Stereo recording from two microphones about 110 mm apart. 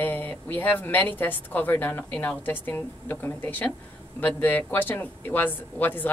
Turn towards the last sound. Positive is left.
turn(degrees=15)  # may be behind; listen again after turning